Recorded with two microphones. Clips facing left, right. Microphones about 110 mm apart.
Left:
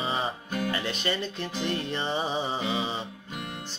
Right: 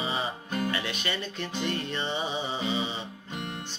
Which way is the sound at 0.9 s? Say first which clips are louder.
Left 3 dB; 35° left (ahead or behind).